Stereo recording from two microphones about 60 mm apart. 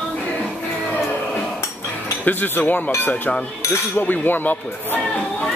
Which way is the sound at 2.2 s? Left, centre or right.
Left.